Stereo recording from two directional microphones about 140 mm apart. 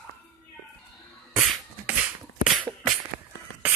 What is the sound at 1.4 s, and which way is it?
Beatboxing, 10° right (ahead or behind).